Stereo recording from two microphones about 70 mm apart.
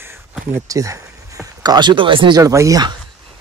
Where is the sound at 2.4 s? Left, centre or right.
Right.